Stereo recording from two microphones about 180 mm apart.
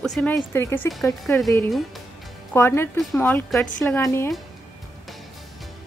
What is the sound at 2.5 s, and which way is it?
A woman's voice, 15° left (ahead or behind).